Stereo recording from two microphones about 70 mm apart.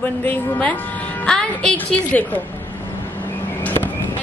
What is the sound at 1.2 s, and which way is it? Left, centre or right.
Speech, centre.